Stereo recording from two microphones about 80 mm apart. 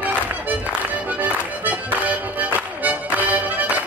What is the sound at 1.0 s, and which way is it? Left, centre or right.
Music, centre.